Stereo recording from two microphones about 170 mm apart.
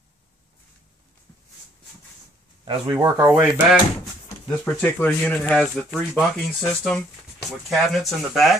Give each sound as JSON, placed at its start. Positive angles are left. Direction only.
{"t": 2.6, "sound": "speech", "side_deg": -25}
{"t": 4.5, "sound": "speech", "side_deg": 10}